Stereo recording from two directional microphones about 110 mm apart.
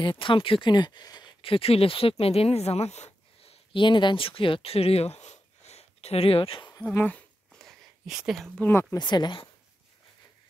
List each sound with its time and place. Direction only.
0.0 s speech: 50° left (ahead or behind)
1.4 s speech: 55° left (ahead or behind); by 3.5 s 80° left
3.7 s speech: 45° left (ahead or behind)
6.9 s speech: 15° left (ahead or behind)
7.6 s a sound: 5° right (ahead or behind)
8.5 s speech: 15° left (ahead or behind)
8.9 s speech: 40° left (ahead or behind)